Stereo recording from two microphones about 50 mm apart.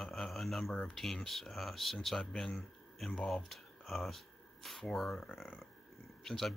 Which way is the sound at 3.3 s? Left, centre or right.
Centre.